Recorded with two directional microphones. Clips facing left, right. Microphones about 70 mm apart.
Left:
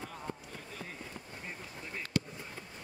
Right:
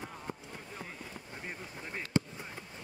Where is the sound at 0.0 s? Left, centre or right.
Centre.